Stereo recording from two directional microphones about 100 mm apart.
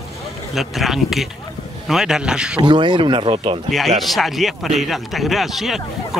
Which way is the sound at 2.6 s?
50° right (ahead or behind).